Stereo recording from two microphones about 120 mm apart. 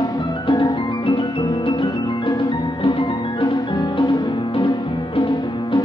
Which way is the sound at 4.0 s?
40° left (ahead or behind).